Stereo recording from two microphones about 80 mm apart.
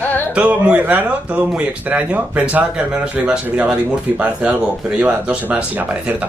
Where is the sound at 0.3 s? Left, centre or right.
Centre.